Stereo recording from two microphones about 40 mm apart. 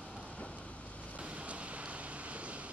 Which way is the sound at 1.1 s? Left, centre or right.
Right.